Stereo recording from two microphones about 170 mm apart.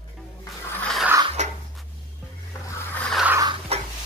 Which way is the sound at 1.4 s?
45° right (ahead or behind).